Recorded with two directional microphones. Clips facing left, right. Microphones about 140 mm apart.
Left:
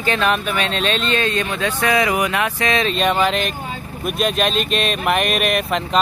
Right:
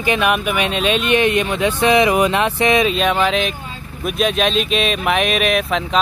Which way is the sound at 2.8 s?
Centre (ahead or behind).